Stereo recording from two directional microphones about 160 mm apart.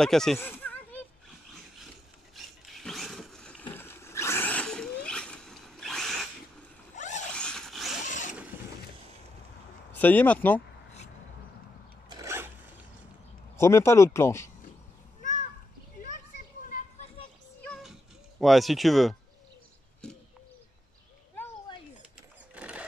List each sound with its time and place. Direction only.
0.0 s speech: 5° left (ahead or behind)
0.4 s a sound: 10° left (ahead or behind)
2.3 s a sound: centre (ahead or behind)
3.7 s a sound: 15° left (ahead or behind)
7.0 s zipper: 50° left (ahead or behind)
7.3 s zipper: 5° left (ahead or behind)
8.0 s zipper: 50° left (ahead or behind)
9.9 s speech: 10° left (ahead or behind)
12.1 s zipper: 20° right (ahead or behind)
13.6 s speech: 15° left (ahead or behind)
17.6 s music: centre (ahead or behind)
18.4 s speech: centre (ahead or behind)
22.5 s a sound: 10° right (ahead or behind)